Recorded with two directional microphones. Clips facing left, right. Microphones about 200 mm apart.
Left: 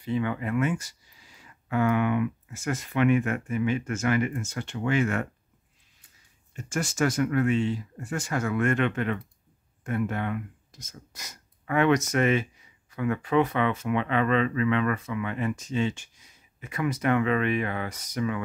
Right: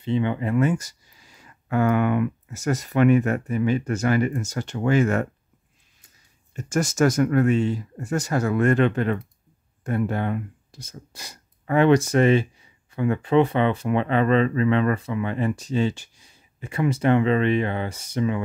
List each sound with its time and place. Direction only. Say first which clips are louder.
0.0 s speech: right 4 dB; 25° right (ahead or behind)
6.5 s speech: right 6 dB; 45° right (ahead or behind); by 18.4 s 25° right (ahead or behind)